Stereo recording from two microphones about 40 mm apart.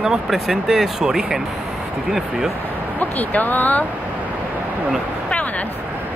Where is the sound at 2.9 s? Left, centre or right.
Left.